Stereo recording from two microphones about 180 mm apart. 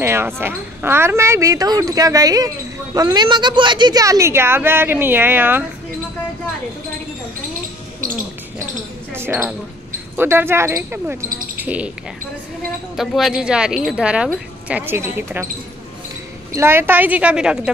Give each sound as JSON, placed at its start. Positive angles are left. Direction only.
{"t": 0.0, "sound": "speech", "side_deg": -15}
{"t": 9.1, "sound": "a sound", "side_deg": -15}
{"t": 10.1, "sound": "speech", "side_deg": -15}
{"t": 12.9, "sound": "speech", "side_deg": 0}
{"t": 16.5, "sound": "speech", "side_deg": -15}